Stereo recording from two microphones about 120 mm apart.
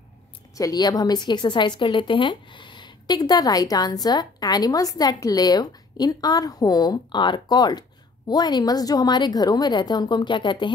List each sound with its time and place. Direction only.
0.6 s a woman's voice: 30° left (ahead or behind)